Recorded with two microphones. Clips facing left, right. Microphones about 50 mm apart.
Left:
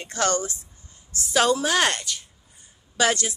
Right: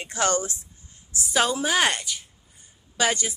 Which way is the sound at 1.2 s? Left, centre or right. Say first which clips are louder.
Left 3 dB; centre.